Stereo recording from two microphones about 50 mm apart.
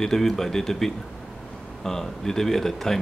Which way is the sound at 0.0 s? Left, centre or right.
Centre.